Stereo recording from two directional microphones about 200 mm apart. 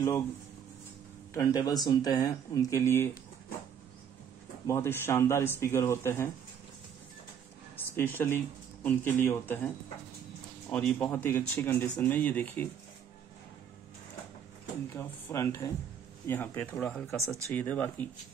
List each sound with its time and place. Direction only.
1.3 s speech: 20° left (ahead or behind)
4.6 s speech: 10° left (ahead or behind)
7.7 s speech: 10° left (ahead or behind)
10.7 s speech: 5° left (ahead or behind)
14.9 s speech: 10° left (ahead or behind)